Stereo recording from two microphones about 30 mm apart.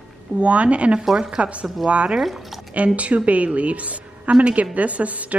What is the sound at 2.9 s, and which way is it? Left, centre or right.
A woman's voice, right.